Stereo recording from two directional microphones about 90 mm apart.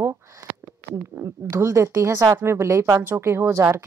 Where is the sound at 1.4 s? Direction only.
30° right (ahead or behind).